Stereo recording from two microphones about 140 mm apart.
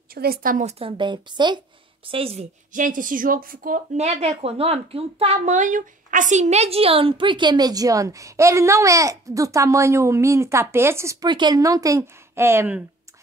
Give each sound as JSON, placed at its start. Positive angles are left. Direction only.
{"t": 0.1, "sound": "a woman's voice", "side_deg": -90}
{"t": 0.7, "sound": "a woman's voice", "side_deg": -45}
{"t": 2.7, "sound": "a woman's voice", "side_deg": -70}
{"t": 11.2, "sound": "a woman's voice", "side_deg": -35}